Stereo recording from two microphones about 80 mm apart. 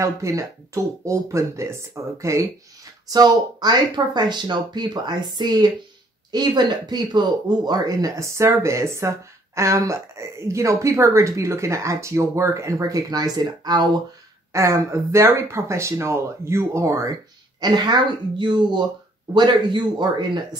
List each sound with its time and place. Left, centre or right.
0.0 s a woman's voice: right
3.1 s a woman's voice: right
14.5 s a woman's voice: right
17.6 s speech: right
19.3 s speech: right